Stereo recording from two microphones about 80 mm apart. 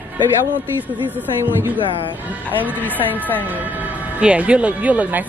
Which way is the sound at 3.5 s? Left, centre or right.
Right.